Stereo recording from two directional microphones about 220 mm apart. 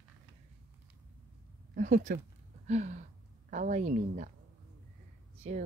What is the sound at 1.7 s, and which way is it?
A woman's voice, 35° right (ahead or behind).